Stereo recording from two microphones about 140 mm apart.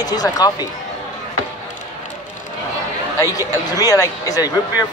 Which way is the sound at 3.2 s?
25° left (ahead or behind).